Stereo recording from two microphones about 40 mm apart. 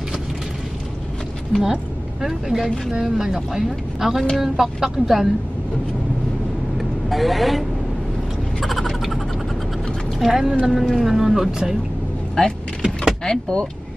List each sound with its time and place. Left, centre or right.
1.5 s a woman's voice: centre
6.8 s speech: centre
8.5 s a sound: centre
10.1 s speech: centre
10.7 s speech: centre
11.0 s a woman's voice: centre
12.4 s speech: centre